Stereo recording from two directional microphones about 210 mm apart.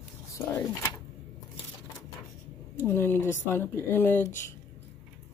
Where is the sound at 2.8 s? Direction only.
10° left (ahead or behind).